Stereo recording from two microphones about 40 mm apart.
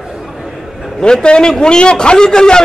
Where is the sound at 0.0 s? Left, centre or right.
Centre.